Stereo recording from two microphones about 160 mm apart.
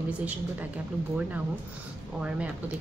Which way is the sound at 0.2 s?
10° right (ahead or behind).